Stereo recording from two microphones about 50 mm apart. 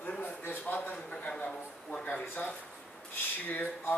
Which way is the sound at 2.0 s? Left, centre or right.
Left.